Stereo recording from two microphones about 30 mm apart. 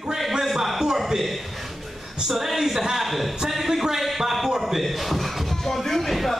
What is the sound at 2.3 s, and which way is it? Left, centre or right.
A man's voice, centre.